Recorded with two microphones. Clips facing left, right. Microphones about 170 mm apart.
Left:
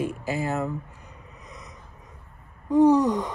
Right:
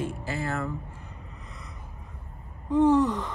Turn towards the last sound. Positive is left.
turn(degrees=15)  # may be behind; listen again after turning